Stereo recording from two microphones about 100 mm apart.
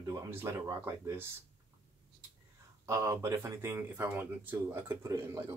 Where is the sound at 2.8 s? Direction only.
30° right (ahead or behind).